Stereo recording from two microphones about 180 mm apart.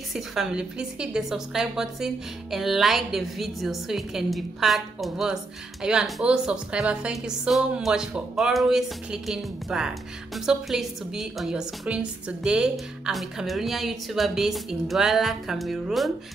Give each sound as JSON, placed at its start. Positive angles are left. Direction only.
{"t": 0.1, "sound": "a woman's voice", "side_deg": 0}